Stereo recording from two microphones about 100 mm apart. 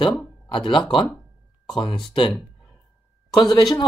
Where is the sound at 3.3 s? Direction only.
40° left (ahead or behind).